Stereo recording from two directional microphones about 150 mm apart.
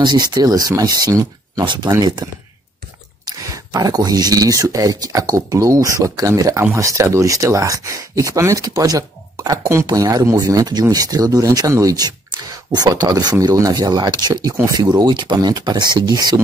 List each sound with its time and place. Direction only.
0.0 s speech: 30° right (ahead or behind)
3.3 s speech: 25° right (ahead or behind)